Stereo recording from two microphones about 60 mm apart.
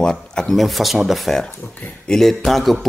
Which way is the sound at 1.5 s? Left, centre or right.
Left.